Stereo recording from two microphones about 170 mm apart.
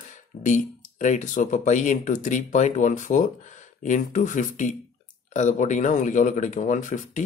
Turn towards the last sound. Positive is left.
turn(degrees=45)  # may be behind; listen again after turning